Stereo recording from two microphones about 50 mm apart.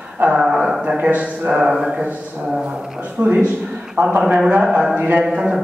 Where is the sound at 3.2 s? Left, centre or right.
Right.